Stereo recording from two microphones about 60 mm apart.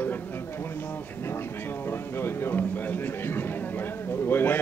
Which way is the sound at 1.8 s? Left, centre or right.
Left.